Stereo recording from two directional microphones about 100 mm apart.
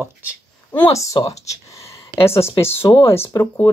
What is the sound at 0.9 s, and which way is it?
Speech, 35° left (ahead or behind).